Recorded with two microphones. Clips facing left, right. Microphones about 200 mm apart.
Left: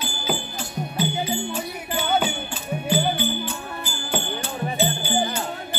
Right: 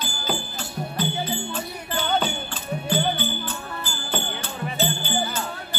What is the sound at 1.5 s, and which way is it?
Music, 10° left (ahead or behind).